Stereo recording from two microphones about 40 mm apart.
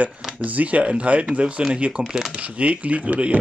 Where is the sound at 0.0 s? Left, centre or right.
Right.